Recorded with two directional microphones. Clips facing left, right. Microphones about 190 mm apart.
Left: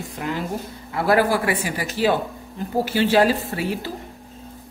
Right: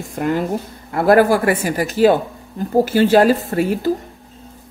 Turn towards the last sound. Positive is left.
turn(degrees=-45)  # may be behind; listen again after turning